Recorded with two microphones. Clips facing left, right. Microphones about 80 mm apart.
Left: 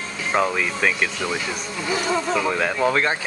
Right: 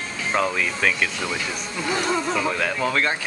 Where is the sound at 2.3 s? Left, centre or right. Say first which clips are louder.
Left 2 dB; centre.